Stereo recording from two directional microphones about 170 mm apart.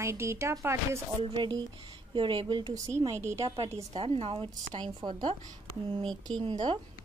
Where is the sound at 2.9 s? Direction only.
15° right (ahead or behind).